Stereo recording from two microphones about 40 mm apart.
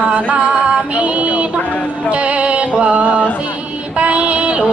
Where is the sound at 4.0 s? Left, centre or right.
Right.